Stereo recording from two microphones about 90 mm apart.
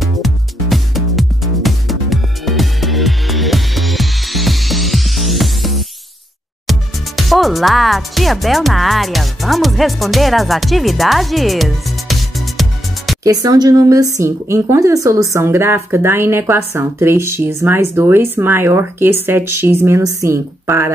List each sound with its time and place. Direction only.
0.0 s music: centre (ahead or behind)
6.7 s speech: centre (ahead or behind)
13.2 s speech: 45° right (ahead or behind); by 20.0 s 25° right (ahead or behind)
20.0 s speech: 35° right (ahead or behind)